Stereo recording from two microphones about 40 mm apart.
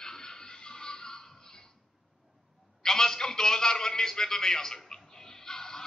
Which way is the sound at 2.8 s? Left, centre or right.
Centre.